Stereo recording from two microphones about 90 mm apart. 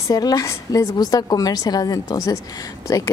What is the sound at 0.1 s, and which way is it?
A woman's voice, 45° left (ahead or behind).